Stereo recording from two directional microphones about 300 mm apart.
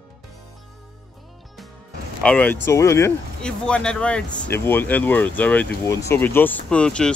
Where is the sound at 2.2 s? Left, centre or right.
Centre.